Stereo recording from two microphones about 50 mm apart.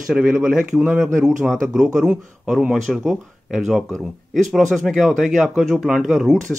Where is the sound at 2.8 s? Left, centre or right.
Centre.